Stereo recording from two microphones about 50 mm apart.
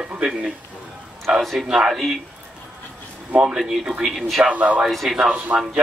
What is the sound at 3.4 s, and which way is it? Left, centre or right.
A man's voice, centre.